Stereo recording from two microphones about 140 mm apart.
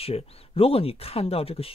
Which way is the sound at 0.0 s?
45° left (ahead or behind).